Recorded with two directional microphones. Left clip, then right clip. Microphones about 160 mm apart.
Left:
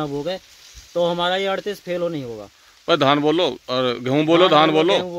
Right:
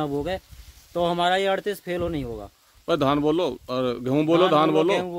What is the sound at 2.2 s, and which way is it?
Speech, 25° right (ahead or behind).